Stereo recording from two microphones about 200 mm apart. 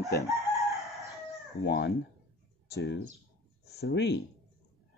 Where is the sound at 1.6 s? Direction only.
55° left (ahead or behind).